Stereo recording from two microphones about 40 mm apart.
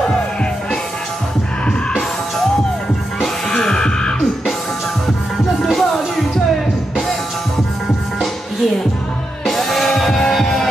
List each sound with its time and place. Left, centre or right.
3.4 s music: centre
5.8 s music: centre
9.5 s music: centre